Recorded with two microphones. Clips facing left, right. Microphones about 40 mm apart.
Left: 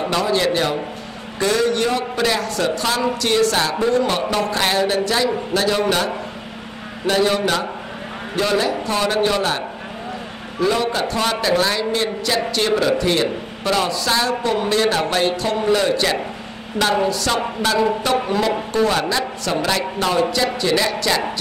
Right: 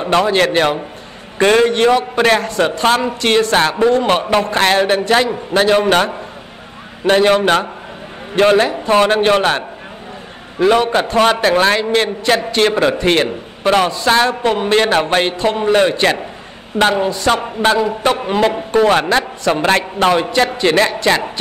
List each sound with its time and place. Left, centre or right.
0.0 s a man's voice: right
11.8 s a man's voice: right
12.7 s a man's voice: right
13.0 s a man's voice: right